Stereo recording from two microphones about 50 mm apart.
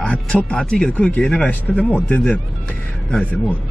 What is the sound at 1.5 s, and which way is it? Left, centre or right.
Speech, left.